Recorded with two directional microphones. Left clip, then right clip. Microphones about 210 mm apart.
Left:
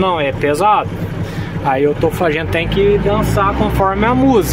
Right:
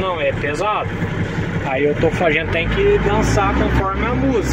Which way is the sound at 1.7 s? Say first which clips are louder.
Left 4 dB; 25° left (ahead or behind).